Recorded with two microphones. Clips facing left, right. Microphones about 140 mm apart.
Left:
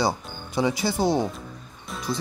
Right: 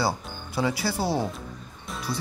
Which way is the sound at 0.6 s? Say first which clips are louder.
Left 3 dB; 20° left (ahead or behind).